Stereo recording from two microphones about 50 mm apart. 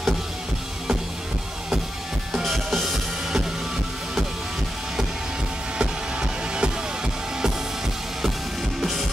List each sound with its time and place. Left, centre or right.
2.3 s music: centre
5.8 s music: centre